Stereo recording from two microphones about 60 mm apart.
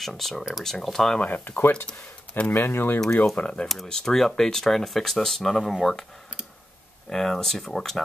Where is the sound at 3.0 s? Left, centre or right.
Centre.